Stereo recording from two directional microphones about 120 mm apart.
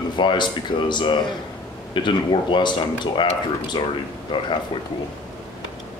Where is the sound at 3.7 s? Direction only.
40° left (ahead or behind).